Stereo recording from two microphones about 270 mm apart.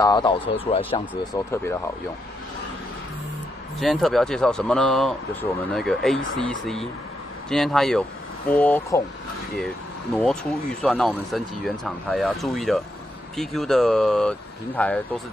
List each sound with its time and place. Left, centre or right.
0.0 s speech: centre
3.8 s speech: centre
10.8 s speech: centre